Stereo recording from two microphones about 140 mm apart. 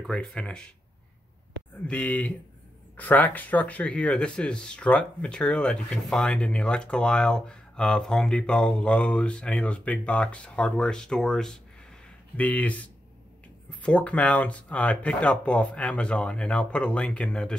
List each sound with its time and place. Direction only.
0.0 s speech: 5° left (ahead or behind)
1.9 s speech: 10° left (ahead or behind)